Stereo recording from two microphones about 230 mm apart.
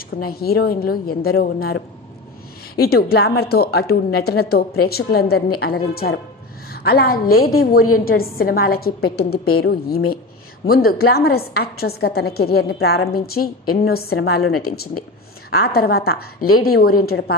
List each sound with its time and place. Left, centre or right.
0.1 s a woman's voice: left
15.6 s a woman's voice: left